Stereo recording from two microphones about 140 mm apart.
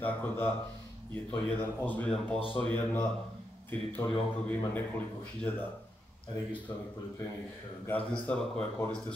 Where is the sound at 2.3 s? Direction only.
40° left (ahead or behind).